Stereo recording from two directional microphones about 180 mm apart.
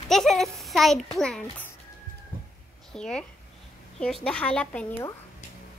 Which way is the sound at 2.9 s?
5° left (ahead or behind).